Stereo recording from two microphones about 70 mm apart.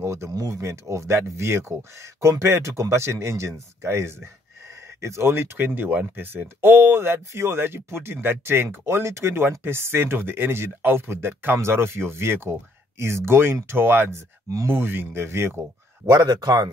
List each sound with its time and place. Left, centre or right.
0.0 s speech: right
0.3 s speech: right
16.1 s speech: right